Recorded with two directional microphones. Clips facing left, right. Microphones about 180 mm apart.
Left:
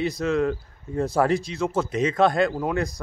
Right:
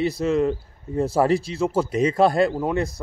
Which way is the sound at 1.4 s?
35° right (ahead or behind).